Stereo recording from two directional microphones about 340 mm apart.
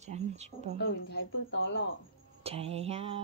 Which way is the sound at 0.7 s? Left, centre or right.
Left.